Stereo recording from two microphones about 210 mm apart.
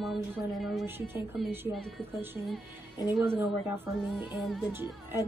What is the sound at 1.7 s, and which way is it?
Speech, centre (ahead or behind).